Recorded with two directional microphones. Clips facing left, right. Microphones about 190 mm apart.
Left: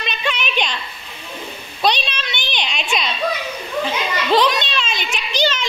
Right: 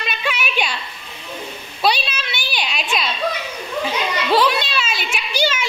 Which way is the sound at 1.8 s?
5° right (ahead or behind).